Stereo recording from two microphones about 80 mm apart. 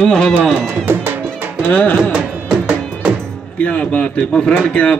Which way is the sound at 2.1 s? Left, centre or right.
Centre.